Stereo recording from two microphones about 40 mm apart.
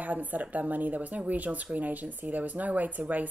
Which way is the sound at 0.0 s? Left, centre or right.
Right.